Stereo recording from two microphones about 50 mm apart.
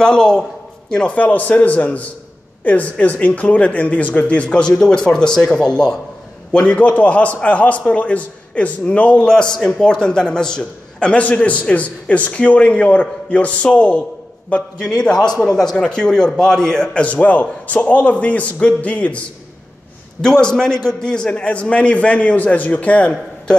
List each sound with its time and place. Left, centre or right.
0.0 s a man's voice: centre
1.1 s a man's voice: left
9.3 s a man's voice: centre
17.0 s a man's voice: left
20.2 s a man's voice: centre